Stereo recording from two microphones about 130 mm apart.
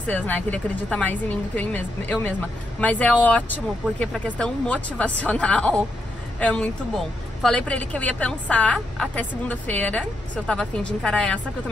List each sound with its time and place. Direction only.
0.0 s speech: 10° left (ahead or behind)